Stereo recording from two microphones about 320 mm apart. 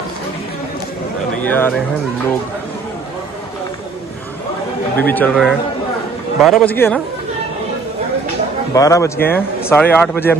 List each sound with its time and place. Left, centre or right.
1.3 s a man's voice: centre
4.9 s speech: centre
8.7 s speech: centre